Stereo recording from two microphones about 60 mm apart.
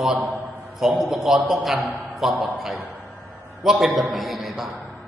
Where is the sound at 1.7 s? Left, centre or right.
Right.